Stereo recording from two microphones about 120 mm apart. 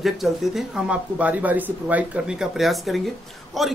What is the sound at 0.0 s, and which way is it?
Speech, centre (ahead or behind).